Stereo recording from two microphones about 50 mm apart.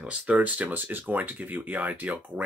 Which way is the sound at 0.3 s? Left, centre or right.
Right.